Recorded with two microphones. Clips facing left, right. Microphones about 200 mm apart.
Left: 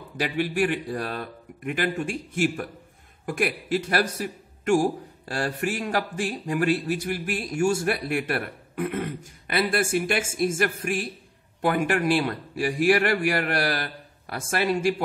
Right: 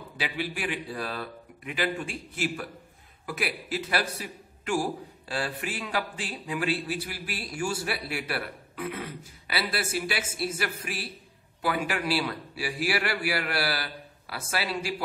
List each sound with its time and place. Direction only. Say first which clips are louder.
0.2 s a man's voice: left 8 dB; 45° left (ahead or behind)